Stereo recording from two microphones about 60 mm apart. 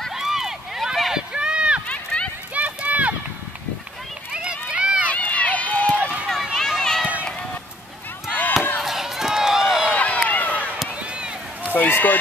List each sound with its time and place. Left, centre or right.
0.1 s a sound: centre
2.5 s run: right
4.3 s run: centre
5.1 s run: left
6.2 s run: centre
6.5 s run: centre
8.3 s chop: left
8.8 s crowd: centre
9.8 s a sound: left
11.0 s run: centre
11.7 s run: left